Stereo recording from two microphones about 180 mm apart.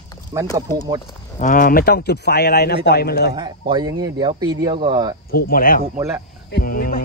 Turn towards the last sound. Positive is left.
turn(degrees=55)  # may be behind; listen again after turning